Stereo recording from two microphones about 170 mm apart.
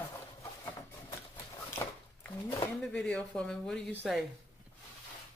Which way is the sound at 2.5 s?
5° left (ahead or behind).